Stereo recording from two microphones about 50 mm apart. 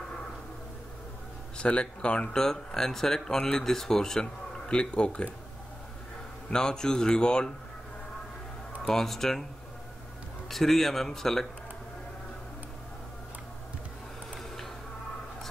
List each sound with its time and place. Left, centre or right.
1.6 s speech: left
6.5 s speech: centre
8.8 s speech: centre
10.5 s speech: centre